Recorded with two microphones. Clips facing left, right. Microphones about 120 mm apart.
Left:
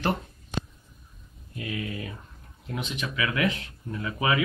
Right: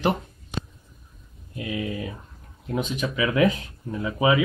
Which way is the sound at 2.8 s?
40° right (ahead or behind).